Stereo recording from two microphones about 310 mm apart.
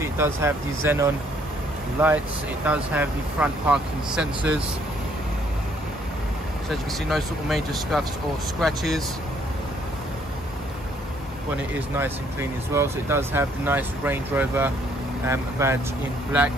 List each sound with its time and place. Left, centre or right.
0.0 s speech: centre
2.6 s speech: centre
6.7 s speech: centre
12.0 s speech: centre